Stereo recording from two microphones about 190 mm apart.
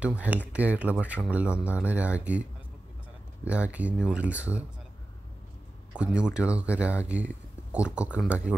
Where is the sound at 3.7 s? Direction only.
5° right (ahead or behind).